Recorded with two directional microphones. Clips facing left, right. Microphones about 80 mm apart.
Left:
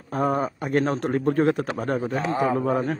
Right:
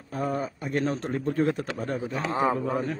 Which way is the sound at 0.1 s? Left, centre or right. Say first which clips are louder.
Left 6 dB; left.